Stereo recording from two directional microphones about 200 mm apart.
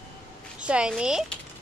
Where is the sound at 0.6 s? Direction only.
5° right (ahead or behind).